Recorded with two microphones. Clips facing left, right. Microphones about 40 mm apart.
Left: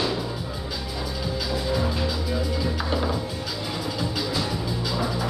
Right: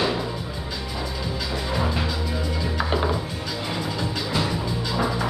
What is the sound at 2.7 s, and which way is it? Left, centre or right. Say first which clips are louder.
Music: right 2 dB; centre.